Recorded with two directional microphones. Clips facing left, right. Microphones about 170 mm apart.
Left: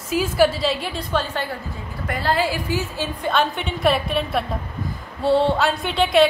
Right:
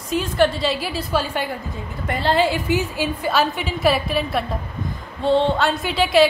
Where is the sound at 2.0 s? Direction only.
25° right (ahead or behind).